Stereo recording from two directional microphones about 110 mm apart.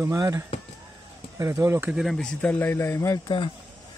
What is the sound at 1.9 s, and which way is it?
Speech, 5° right (ahead or behind).